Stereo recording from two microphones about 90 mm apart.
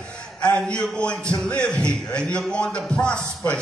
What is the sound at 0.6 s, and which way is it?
Speech, 5° left (ahead or behind).